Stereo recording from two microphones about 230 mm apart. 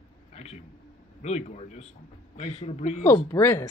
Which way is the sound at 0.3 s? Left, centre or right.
Left.